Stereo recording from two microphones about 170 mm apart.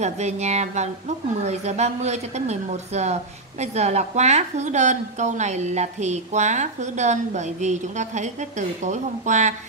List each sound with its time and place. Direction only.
0.0 s a woman's voice: 40° right (ahead or behind)